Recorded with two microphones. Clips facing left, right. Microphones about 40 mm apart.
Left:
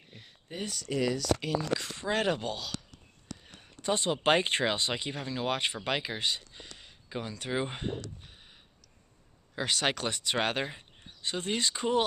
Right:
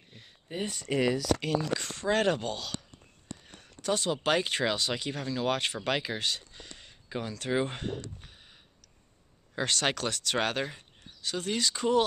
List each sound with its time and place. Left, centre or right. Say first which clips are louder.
0.7 s speech: right 2 dB; right
1.4 s speech: right 1 dB; centre
3.5 s speech: even; left
9.6 s speech: right 1 dB; centre